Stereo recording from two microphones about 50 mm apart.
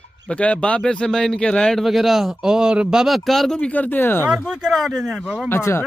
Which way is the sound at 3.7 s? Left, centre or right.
Left.